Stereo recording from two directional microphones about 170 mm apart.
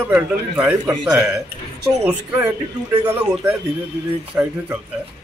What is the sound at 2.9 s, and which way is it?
Speech, 20° right (ahead or behind).